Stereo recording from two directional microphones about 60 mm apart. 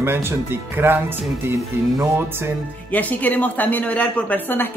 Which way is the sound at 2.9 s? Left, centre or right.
Left.